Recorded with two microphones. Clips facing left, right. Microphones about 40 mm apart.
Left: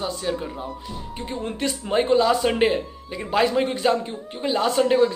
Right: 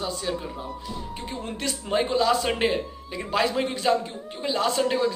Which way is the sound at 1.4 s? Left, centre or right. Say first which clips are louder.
Left 5 dB; left.